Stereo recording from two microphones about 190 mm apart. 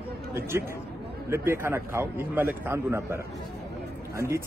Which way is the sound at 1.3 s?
15° right (ahead or behind).